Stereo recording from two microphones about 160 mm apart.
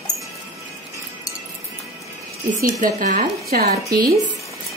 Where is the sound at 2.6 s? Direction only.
55° right (ahead or behind).